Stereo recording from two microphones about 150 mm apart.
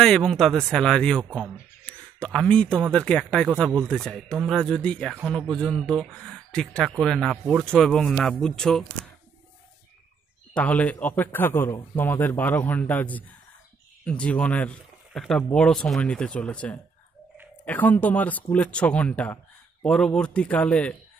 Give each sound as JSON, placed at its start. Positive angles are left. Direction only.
{"t": 0.0, "sound": "speech", "side_deg": 5}
{"t": 10.5, "sound": "speech", "side_deg": 10}